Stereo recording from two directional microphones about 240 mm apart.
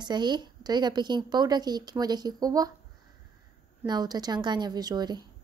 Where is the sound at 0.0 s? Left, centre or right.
Centre.